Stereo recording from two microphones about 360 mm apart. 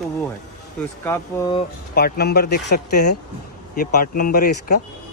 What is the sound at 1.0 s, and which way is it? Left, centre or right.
Speech, centre.